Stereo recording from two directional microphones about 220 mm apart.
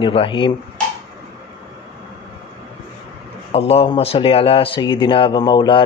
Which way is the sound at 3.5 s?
25° left (ahead or behind).